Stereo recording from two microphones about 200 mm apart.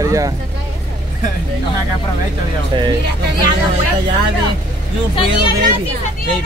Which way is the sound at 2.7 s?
25° right (ahead or behind).